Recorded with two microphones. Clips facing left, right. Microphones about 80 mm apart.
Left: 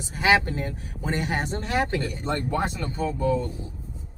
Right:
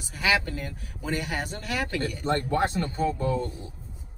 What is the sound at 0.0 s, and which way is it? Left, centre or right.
Speech, left.